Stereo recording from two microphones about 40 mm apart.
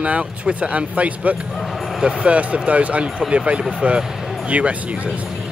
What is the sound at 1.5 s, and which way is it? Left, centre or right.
Speech, centre.